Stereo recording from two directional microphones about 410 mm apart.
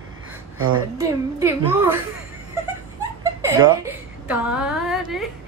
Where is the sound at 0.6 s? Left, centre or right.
Right.